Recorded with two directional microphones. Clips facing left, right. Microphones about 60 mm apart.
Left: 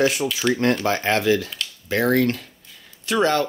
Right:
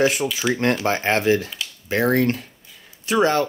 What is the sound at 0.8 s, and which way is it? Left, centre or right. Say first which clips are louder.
Speech: right 1 dB; right.